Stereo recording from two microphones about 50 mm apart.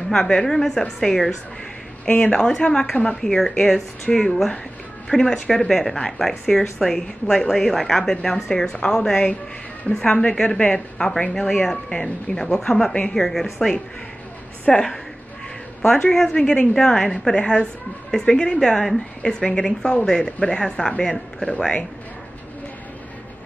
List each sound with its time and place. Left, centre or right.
0.1 s a woman's voice: centre
5.7 s a woman's voice: centre